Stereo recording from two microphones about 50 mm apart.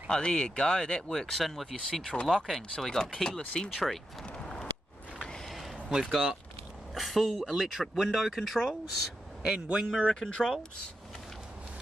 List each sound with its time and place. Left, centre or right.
0.1 s speech: centre
1.9 s speech: centre
2.7 s speech: centre
3.7 s a sound: centre
6.9 s speech: centre
9.4 s speech: centre
9.9 s speech: centre